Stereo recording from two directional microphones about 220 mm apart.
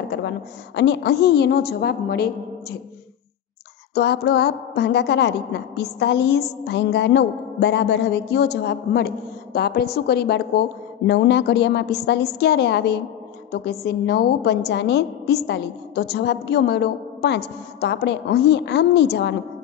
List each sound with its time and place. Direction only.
0.7 s a woman's voice: 50° left (ahead or behind)
3.9 s a woman's voice: 50° left (ahead or behind)